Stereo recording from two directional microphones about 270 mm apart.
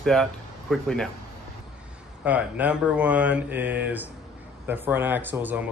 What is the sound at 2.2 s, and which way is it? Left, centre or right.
Speech, centre.